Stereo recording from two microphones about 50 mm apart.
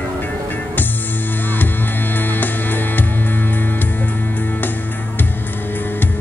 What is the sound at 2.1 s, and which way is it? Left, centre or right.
Music, left.